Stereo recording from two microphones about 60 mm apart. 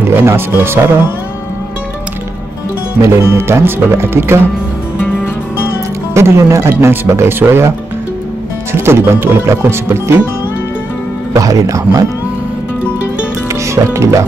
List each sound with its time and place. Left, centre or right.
0.0 s speech: right
3.0 s speech: right
4.9 s music: left
6.1 s speech: right
8.7 s speech: right
11.3 s speech: right
13.8 s speech: right